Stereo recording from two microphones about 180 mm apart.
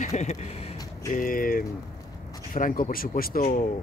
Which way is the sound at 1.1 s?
50° left (ahead or behind).